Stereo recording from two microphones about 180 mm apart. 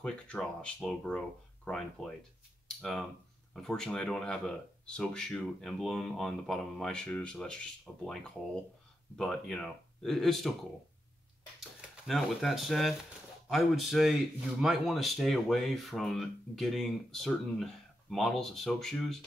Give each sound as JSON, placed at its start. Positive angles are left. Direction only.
{"t": 0.0, "sound": "speech", "side_deg": 5}
{"t": 12.1, "sound": "speech", "side_deg": 0}